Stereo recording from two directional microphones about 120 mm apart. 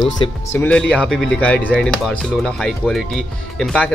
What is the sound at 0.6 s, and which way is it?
Speech, 10° left (ahead or behind).